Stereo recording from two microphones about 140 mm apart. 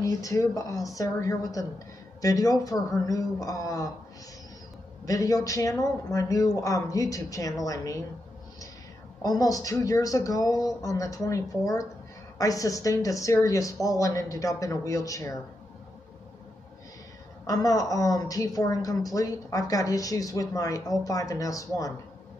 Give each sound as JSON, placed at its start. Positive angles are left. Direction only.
{"t": 0.0, "sound": "a woman's voice", "side_deg": 25}
{"t": 5.0, "sound": "a woman's voice", "side_deg": 25}
{"t": 9.2, "sound": "a woman's voice", "side_deg": 25}
{"t": 17.5, "sound": "a woman's voice", "side_deg": 25}